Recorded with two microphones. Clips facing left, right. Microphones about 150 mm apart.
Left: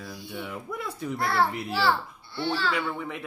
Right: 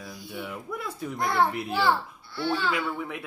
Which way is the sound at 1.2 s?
15° right (ahead or behind).